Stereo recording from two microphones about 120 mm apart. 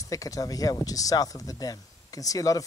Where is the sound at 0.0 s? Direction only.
30° left (ahead or behind).